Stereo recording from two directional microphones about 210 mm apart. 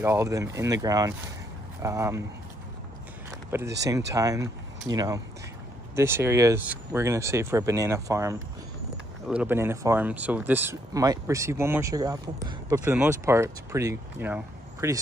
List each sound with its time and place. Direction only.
0.0 s speech: 15° right (ahead or behind)
3.3 s a sound: 10° right (ahead or behind)
4.1 s speech: 15° right (ahead or behind)